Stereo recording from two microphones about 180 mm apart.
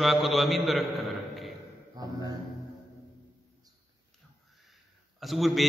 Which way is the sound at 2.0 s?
20° right (ahead or behind).